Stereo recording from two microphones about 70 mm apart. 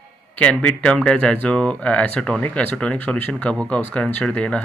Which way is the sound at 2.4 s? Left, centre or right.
Left.